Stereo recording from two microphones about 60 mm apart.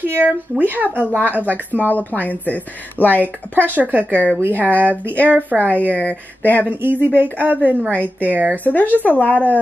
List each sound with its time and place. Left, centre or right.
0.0 s speech: right
1.8 s a woman's voice: left
3.6 s speech: right
5.9 s a woman's voice: left
6.6 s speech: right
8.6 s a woman's voice: left